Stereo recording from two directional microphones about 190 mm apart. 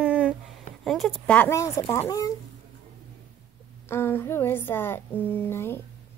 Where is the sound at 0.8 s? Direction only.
Centre (ahead or behind).